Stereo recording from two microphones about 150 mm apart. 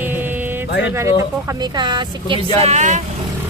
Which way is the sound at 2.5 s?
50° right (ahead or behind).